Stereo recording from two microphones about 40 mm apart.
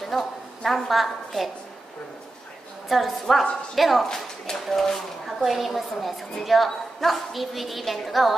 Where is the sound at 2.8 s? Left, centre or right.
Centre.